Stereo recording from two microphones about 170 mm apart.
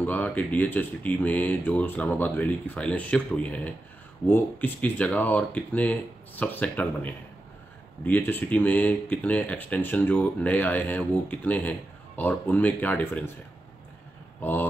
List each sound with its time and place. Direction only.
0.0 s speech: 10° left (ahead or behind)
14.4 s speech: 10° left (ahead or behind)